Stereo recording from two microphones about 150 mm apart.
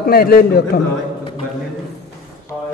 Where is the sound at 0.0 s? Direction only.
85° left.